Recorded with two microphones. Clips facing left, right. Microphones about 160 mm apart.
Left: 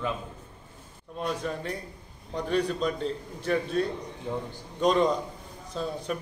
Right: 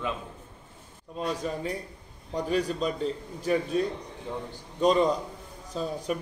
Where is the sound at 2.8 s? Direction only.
5° right (ahead or behind).